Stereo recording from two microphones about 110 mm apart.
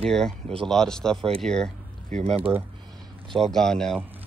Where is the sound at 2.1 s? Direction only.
80° right; by 2.5 s 65° right (ahead or behind).